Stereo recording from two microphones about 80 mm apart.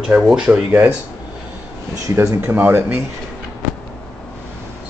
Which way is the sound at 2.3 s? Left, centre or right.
Right.